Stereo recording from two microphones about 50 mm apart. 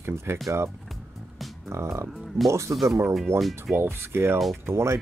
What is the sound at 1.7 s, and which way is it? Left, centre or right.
Speech, right.